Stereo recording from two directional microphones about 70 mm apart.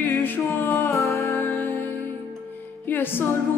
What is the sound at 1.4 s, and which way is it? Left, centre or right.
Music, left.